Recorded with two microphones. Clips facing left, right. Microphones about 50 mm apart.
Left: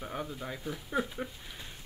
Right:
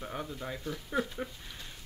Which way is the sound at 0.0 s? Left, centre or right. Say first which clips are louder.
Even; centre.